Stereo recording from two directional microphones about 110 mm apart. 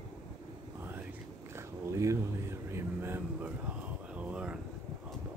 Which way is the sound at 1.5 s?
25° right (ahead or behind).